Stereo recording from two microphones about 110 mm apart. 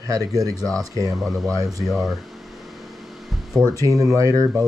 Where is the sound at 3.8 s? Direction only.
30° right (ahead or behind).